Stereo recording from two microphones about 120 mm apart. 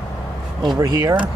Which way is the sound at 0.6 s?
30° right (ahead or behind).